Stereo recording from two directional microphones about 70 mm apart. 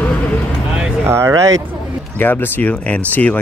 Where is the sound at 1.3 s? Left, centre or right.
Right.